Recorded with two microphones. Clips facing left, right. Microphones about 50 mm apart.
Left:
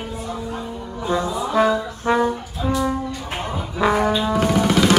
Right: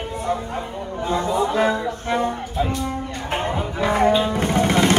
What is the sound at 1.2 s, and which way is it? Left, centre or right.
Music, right.